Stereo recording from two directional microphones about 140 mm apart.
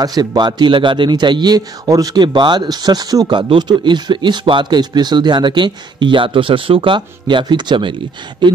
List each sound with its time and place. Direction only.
0.0 s a man's voice: 25° right (ahead or behind)